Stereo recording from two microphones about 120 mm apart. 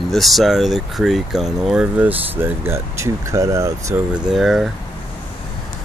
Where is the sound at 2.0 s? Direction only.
15° right (ahead or behind).